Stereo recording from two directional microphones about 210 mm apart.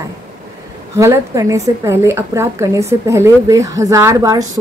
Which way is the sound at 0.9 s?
15° right (ahead or behind).